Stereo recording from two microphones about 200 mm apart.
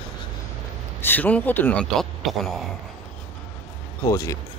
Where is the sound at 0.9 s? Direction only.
10° left (ahead or behind).